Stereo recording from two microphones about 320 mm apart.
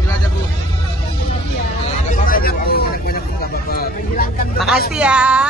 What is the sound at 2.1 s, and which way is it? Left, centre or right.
Vehicle, left.